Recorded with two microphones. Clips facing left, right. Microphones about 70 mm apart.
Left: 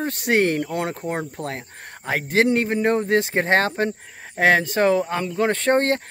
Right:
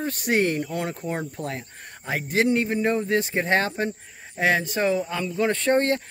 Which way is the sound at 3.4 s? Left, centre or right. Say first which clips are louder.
Left 3 dB; left.